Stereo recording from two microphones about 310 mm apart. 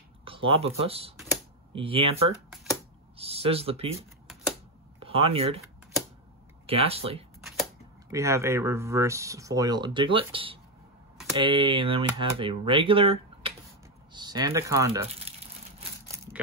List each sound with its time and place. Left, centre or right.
0.2 s speech: centre
5.0 s speech: centre
6.6 s speech: centre
15.3 s crumpling: centre